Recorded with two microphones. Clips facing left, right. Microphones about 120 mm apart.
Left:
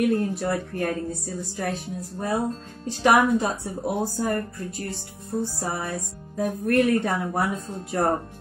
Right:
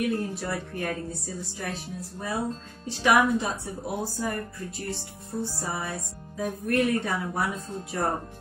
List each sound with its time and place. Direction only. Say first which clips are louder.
0.0 s speech: left 5 dB; 50° left (ahead or behind)